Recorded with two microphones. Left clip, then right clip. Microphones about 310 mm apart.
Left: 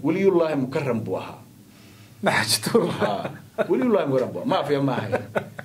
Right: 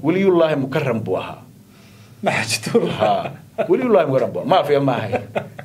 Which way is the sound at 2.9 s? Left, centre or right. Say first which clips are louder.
Right 7 dB; right.